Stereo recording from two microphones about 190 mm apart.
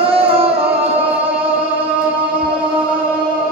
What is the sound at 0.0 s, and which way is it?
Music, 30° right (ahead or behind).